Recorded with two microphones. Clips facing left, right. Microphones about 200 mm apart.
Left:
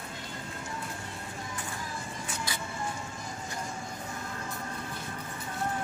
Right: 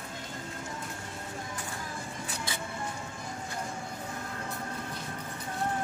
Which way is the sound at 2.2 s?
25° right (ahead or behind).